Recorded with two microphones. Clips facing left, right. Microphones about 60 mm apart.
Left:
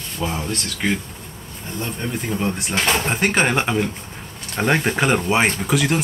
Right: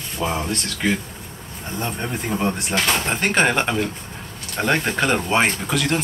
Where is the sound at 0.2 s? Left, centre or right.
Centre.